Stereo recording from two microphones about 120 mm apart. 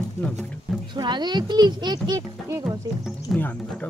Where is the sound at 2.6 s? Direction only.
Centre (ahead or behind).